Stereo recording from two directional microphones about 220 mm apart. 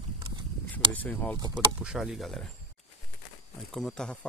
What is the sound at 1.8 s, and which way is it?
Speech, 5° right (ahead or behind).